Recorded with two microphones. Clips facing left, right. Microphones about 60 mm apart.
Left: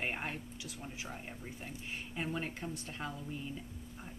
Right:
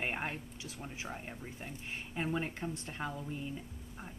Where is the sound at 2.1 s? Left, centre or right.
Centre.